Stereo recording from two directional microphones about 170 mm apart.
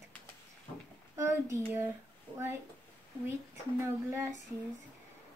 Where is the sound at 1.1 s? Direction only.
15° right (ahead or behind).